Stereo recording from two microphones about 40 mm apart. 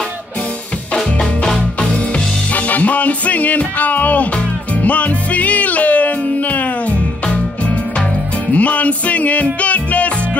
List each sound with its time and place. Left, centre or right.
2.5 s music: left
8.5 s music: left